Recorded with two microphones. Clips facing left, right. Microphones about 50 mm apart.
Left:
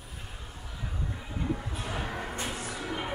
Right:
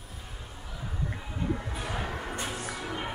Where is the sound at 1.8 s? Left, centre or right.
Centre.